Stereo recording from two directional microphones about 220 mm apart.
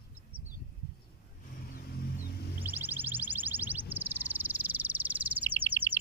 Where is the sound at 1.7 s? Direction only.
40° left (ahead or behind).